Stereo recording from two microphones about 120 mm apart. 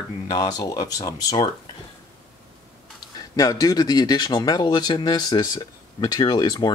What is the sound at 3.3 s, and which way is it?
A man's voice, 30° left (ahead or behind).